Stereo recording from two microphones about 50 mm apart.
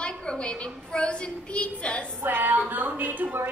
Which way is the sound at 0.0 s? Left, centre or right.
Left.